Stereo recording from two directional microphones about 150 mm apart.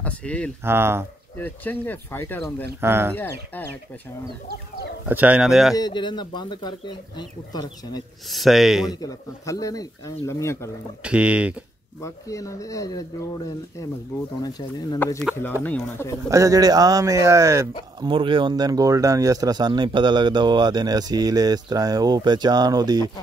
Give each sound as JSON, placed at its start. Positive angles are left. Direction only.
{"t": 0.0, "sound": "speech", "side_deg": 10}
{"t": 0.7, "sound": "speech", "side_deg": -15}
{"t": 1.4, "sound": "speech", "side_deg": 10}
{"t": 2.8, "sound": "speech", "side_deg": -15}
{"t": 5.0, "sound": "speech", "side_deg": -10}
{"t": 5.8, "sound": "speech", "side_deg": 30}
{"t": 8.3, "sound": "speech", "side_deg": 0}
{"t": 9.0, "sound": "speech", "side_deg": 20}
{"t": 11.1, "sound": "speech", "side_deg": -10}
{"t": 12.0, "sound": "speech", "side_deg": 20}
{"t": 14.4, "sound": "speech", "side_deg": 30}
{"t": 16.3, "sound": "speech", "side_deg": -20}
{"t": 18.0, "sound": "speech", "side_deg": -35}